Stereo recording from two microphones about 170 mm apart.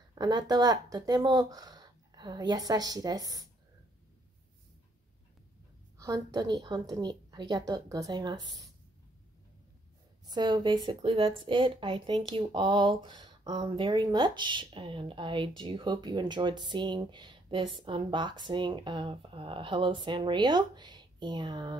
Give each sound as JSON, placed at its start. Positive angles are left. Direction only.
{"t": 0.1, "sound": "a woman's voice", "side_deg": -25}
{"t": 5.9, "sound": "a woman's voice", "side_deg": -20}
{"t": 10.2, "sound": "a woman's voice", "side_deg": -25}